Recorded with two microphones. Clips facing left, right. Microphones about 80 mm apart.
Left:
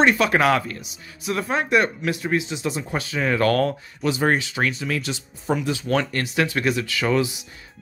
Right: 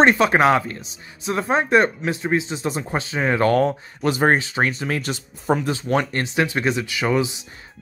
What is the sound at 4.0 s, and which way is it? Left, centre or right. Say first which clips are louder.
Speech: right 3 dB; right.